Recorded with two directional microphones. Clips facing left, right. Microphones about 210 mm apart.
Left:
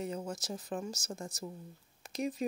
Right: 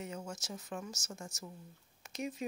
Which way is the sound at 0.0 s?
35° left (ahead or behind).